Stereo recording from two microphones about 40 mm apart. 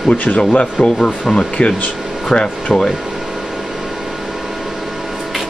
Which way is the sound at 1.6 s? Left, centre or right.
Left.